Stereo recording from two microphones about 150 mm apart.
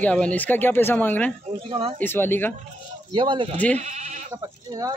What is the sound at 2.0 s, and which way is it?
Speech, 15° left (ahead or behind).